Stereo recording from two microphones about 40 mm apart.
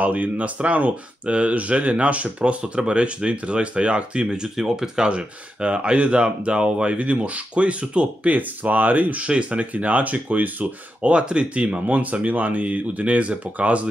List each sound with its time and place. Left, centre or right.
0.0 s speech: right
2.6 s speech: right
11.0 s speech: right